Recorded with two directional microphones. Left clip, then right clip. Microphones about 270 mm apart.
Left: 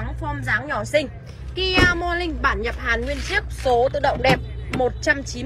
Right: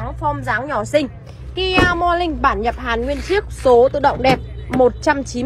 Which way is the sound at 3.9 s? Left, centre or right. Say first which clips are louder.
Right 4 dB; centre.